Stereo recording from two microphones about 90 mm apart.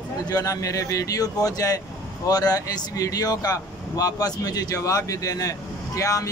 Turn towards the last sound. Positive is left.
turn(degrees=35)  # may be behind; listen again after turning